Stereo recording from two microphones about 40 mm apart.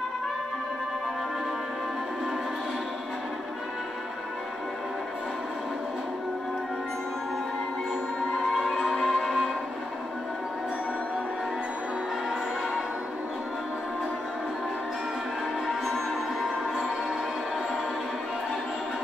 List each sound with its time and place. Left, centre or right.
8.9 s music: centre
15.8 s music: centre